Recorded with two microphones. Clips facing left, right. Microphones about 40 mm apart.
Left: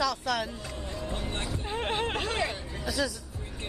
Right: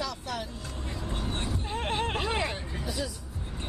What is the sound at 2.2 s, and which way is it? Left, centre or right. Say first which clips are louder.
Speech: even; centre.